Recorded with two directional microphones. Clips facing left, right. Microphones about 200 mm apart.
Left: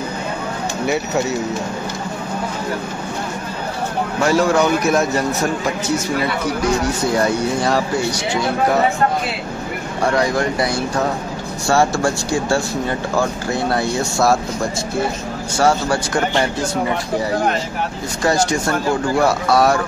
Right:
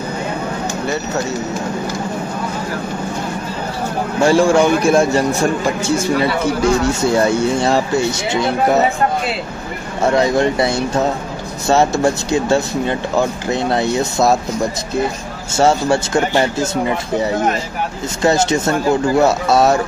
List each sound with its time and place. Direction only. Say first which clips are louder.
4.2 s a man's voice: right 4 dB; 30° right (ahead or behind)
10.0 s a man's voice: right 4 dB; 25° right (ahead or behind)
15.5 s a man's voice: right 3 dB; 25° right (ahead or behind)